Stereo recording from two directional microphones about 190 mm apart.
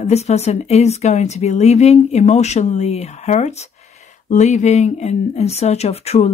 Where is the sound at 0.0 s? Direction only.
35° left (ahead or behind).